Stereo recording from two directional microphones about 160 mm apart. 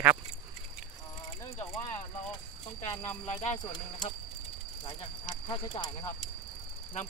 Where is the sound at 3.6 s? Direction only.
25° left (ahead or behind).